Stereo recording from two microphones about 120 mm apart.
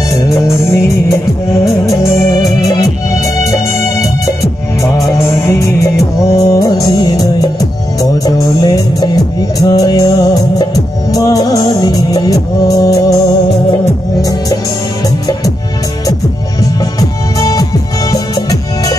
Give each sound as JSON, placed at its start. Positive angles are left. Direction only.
{"t": 0.1, "sound": "music", "side_deg": 25}
{"t": 1.9, "sound": "music", "side_deg": 0}
{"t": 5.1, "sound": "music", "side_deg": 25}
{"t": 17.4, "sound": "music", "side_deg": 30}